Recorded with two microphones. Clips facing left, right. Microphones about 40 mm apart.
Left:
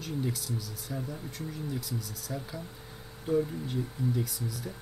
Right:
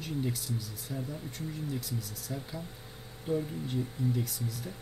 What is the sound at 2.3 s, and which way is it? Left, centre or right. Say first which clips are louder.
Speech: left 1 dB; centre.